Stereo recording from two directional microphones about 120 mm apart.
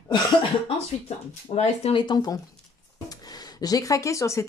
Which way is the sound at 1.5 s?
45° left (ahead or behind).